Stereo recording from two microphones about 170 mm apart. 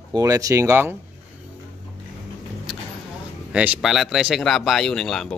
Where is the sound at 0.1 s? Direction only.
20° right (ahead or behind).